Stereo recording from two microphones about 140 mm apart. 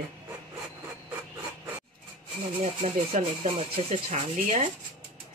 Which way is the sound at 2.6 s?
60° right (ahead or behind).